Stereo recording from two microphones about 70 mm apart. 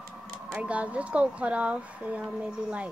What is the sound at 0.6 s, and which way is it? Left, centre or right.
Speech, centre.